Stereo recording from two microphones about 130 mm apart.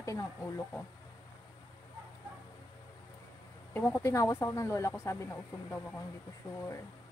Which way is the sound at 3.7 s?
15° left (ahead or behind).